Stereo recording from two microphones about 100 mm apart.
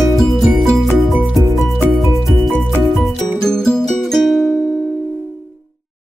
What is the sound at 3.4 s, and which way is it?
Music, 5° left (ahead or behind).